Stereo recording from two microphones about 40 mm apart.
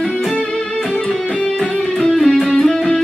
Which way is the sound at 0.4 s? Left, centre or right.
Centre.